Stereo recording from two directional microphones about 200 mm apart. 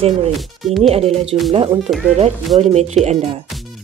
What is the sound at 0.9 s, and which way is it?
Speech, 30° right (ahead or behind).